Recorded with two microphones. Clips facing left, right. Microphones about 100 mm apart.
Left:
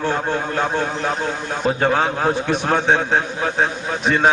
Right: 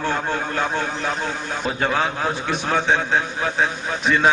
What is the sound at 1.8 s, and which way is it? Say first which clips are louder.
A man's voice: left 2 dB; 35° left (ahead or behind).